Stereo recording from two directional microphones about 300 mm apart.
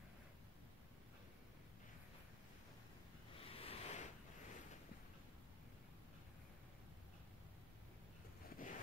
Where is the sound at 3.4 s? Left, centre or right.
Centre.